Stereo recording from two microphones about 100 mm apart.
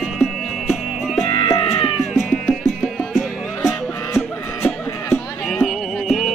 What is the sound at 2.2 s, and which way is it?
Music, centre (ahead or behind).